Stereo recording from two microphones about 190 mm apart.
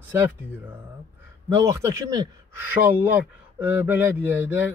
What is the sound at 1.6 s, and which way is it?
Speech, 15° right (ahead or behind).